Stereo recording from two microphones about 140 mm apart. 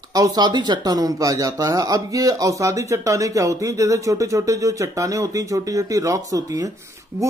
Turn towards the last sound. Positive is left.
turn(degrees=-25)  # may be behind; listen again after turning